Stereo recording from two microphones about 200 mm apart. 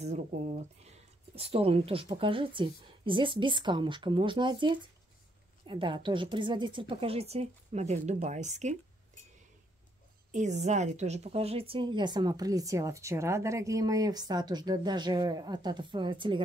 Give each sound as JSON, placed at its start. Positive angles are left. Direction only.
{"t": 0.8, "sound": "a woman's voice", "side_deg": -30}
{"t": 10.3, "sound": "a woman's voice", "side_deg": -35}